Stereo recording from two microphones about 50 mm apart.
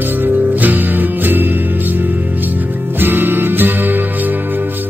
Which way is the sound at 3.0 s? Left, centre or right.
Right.